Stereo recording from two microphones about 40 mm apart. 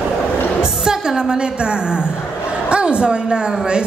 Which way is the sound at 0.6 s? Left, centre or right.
Centre.